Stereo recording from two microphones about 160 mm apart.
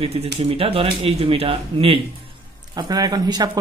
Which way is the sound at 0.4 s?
35° right (ahead or behind).